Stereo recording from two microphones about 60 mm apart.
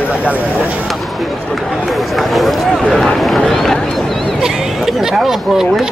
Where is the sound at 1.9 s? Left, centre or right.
Centre.